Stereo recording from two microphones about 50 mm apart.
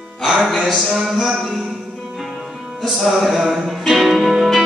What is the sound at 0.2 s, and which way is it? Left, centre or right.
Speech, centre.